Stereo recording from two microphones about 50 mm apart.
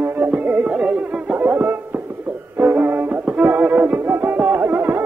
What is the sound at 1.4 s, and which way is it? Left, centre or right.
Music, right.